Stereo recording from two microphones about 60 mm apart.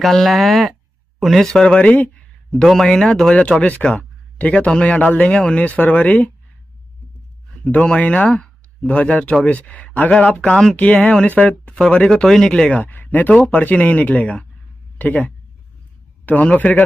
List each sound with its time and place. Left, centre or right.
0.0 s speech: centre
1.8 s speech: left
2.5 s speech: centre; by 6.3 s left
7.6 s speech: centre
12.1 s speech: centre
12.7 s speech: left